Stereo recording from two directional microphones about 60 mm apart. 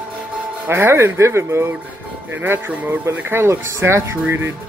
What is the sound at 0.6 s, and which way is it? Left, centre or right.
Speech, right.